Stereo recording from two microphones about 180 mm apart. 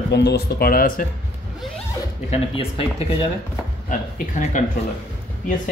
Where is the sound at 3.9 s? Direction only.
45° left (ahead or behind).